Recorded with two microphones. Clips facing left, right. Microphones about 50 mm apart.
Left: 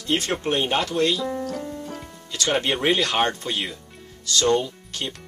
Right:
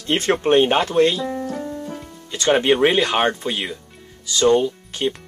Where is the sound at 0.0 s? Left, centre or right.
Right.